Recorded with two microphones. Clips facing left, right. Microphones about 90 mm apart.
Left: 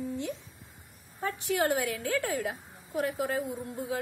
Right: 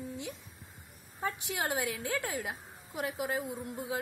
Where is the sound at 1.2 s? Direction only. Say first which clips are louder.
Left 6 dB; 15° right (ahead or behind).